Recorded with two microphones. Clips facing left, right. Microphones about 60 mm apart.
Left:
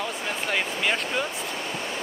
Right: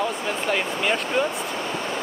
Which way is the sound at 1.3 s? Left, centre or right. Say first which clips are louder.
Right 4 dB; right.